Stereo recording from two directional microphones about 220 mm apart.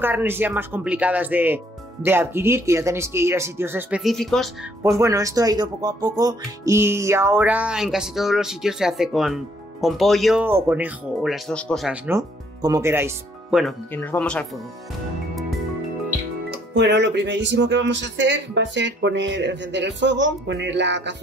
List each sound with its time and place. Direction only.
0.0 s speech: 10° right (ahead or behind)
4.9 s speech: 15° right (ahead or behind)
12.1 s speech: 15° right (ahead or behind); by 14.4 s 5° left (ahead or behind)
16.7 s speech: 55° right (ahead or behind)